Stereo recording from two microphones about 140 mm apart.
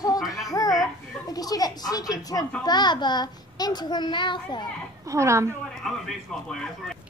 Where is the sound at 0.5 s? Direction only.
25° left (ahead or behind).